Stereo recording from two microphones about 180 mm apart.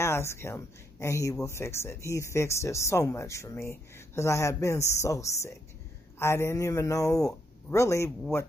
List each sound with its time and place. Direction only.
0.0 s speech: 15° left (ahead or behind)